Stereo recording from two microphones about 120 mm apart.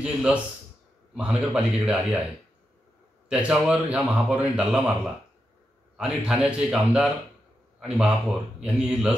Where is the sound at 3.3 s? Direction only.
5° right (ahead or behind).